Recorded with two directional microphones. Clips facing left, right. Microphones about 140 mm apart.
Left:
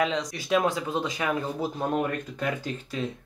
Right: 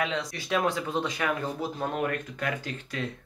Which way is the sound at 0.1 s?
15° left (ahead or behind).